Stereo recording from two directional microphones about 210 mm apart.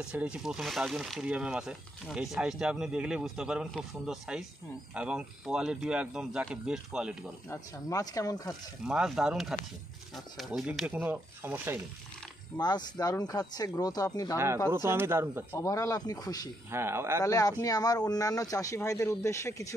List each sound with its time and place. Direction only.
0.0 s speech: 5° right (ahead or behind)
7.4 s speech: 15° left (ahead or behind)
8.8 s speech: 5° right (ahead or behind)
12.5 s speech: 20° left (ahead or behind)
14.7 s speech: 10° right (ahead or behind)
15.5 s speech: 15° left (ahead or behind)
16.7 s speech: 10° right (ahead or behind)
17.2 s speech: 15° left (ahead or behind)